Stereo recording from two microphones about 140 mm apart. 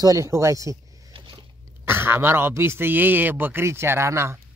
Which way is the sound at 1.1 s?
35° right (ahead or behind).